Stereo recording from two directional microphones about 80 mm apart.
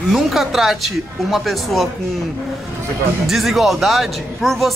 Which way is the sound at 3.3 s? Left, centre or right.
Centre.